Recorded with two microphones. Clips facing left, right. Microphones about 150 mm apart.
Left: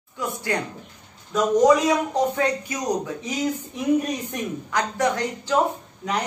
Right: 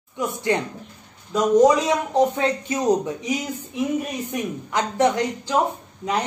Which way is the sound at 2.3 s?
25° right (ahead or behind).